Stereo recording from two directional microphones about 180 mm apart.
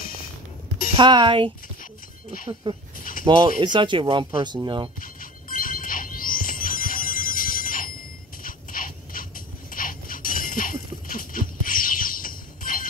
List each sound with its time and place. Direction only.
0.9 s speech: 25° right (ahead or behind)
2.6 s speech: 25° right (ahead or behind)
3.0 s a sound: 50° left (ahead or behind)
3.3 s speech: 25° right (ahead or behind)
5.0 s music: 50° left (ahead or behind)
8.5 s a sound: 50° left (ahead or behind)